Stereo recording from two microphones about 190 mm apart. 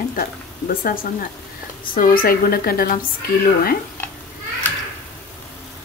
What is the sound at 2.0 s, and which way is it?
A woman's voice, 50° left (ahead or behind).